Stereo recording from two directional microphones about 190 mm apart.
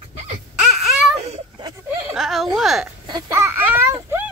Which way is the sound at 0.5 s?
5° right (ahead or behind).